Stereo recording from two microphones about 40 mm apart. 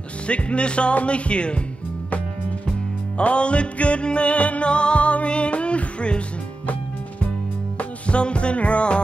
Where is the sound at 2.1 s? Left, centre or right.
Left.